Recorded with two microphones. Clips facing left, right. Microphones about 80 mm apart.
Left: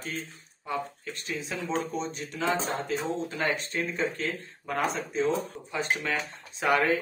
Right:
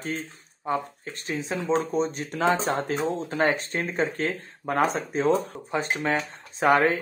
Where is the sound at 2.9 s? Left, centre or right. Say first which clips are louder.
Right 5 dB; right.